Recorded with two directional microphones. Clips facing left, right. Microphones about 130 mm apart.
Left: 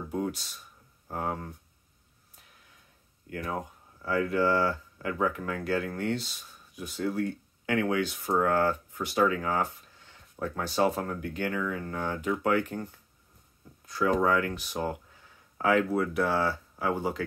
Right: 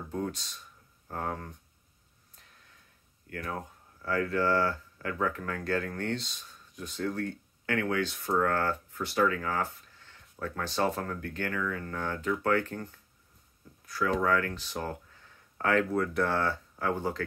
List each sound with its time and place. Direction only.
0.1 s speech: 10° left (ahead or behind)
3.3 s speech: 15° left (ahead or behind)
13.8 s speech: 20° left (ahead or behind)